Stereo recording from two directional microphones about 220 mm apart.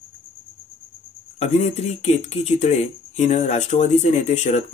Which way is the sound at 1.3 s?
30° left (ahead or behind).